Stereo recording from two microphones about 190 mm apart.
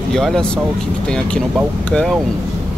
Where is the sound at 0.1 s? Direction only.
5° left (ahead or behind).